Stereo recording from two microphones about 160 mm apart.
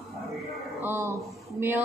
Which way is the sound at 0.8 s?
15° right (ahead or behind).